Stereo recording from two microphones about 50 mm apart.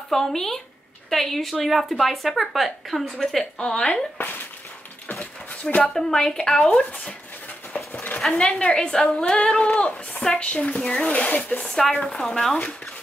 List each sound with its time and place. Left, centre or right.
0.1 s a woman's voice: centre
3.6 s a woman's voice: centre
4.2 s a sound: left
5.5 s a sound: left
5.9 s speech: centre
8.2 s a woman's voice: centre
11.7 s speech: centre